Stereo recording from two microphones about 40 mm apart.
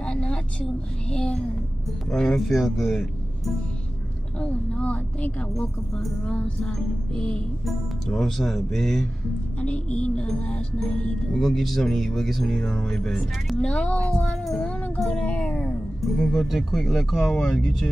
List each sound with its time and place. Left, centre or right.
0.0 s vehicle: left
1.1 s a sound: centre
2.0 s speech: centre
4.4 s a woman's voice: left
8.2 s a man's voice: centre
9.6 s a woman's voice: left
11.3 s speech: centre
12.5 s a man's voice: centre
13.7 s a woman's voice: left
16.0 s a man's voice: centre